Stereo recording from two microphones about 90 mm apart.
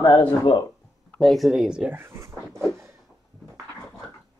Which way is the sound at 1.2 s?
Centre (ahead or behind).